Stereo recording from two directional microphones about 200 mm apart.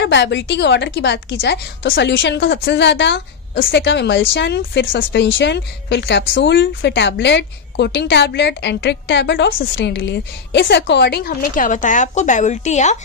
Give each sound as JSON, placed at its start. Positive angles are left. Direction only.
{"t": 0.0, "sound": "a woman's voice", "side_deg": 60}